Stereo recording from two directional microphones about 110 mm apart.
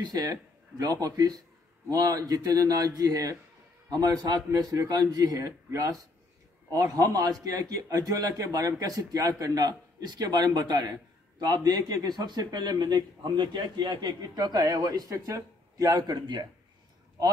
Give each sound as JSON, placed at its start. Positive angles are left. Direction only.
{"t": 0.0, "sound": "a man's voice", "side_deg": -35}